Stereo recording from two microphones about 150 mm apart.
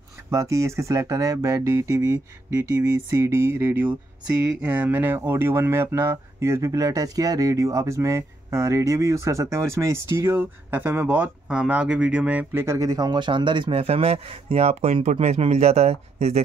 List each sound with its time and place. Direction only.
0.3 s speech: 20° right (ahead or behind); by 16.4 s 45° right (ahead or behind)